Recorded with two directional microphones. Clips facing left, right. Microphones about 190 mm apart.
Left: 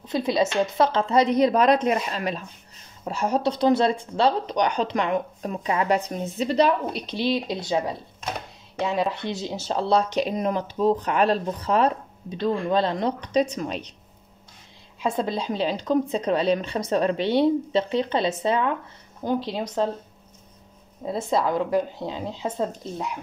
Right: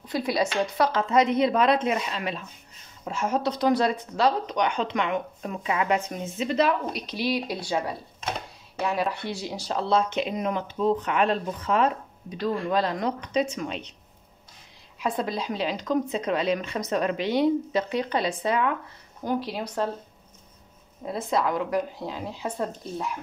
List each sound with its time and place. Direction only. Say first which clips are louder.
0.1 s a woman's voice: left 3 dB; 25° left (ahead or behind); by 13.9 s 40° left (ahead or behind)
15.0 s a woman's voice: left 2 dB; 25° left (ahead or behind)
21.0 s a woman's voice: left 2 dB; 30° left (ahead or behind)